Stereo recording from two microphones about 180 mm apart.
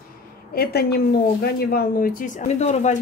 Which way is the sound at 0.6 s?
60° left (ahead or behind).